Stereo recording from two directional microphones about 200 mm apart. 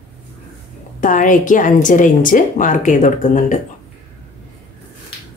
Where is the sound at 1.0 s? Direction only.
40° left (ahead or behind).